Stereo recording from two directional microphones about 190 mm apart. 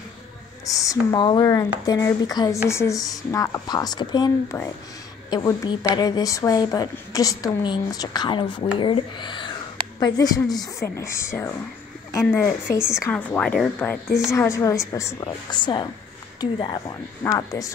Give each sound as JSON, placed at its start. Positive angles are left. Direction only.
{"t": 0.7, "sound": "a woman's voice", "side_deg": 20}